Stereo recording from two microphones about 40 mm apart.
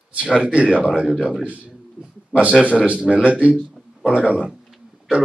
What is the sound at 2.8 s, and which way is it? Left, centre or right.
Speech, right.